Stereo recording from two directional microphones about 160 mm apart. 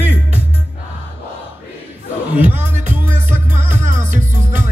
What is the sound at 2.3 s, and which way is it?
Music, 10° right (ahead or behind).